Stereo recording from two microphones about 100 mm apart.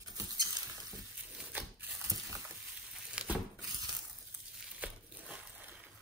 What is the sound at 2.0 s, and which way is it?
Vehicle, 35° right (ahead or behind).